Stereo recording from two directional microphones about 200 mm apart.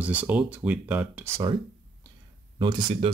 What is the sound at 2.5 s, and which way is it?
Speech, 25° right (ahead or behind).